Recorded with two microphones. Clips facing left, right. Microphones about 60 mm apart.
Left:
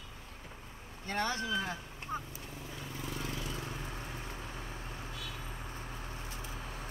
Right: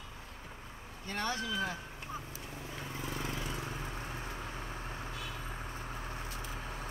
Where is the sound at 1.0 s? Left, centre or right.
Left.